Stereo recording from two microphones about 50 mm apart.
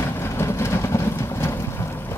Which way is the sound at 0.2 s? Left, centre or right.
Left.